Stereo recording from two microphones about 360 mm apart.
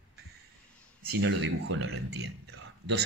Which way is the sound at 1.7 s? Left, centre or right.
Right.